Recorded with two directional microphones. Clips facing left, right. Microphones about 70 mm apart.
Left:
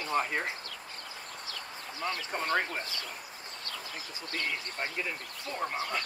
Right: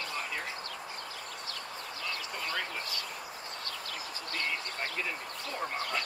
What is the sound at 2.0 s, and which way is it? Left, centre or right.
Speech, left.